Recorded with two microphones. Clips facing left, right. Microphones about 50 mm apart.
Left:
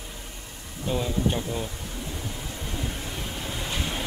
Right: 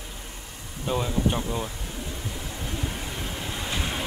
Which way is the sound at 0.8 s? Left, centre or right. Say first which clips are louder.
Right 1 dB; centre.